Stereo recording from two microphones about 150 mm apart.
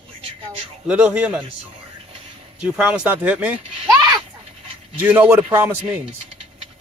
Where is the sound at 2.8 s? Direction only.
5° right (ahead or behind).